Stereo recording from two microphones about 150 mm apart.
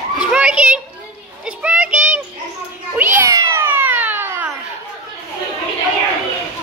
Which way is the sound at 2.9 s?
15° right (ahead or behind).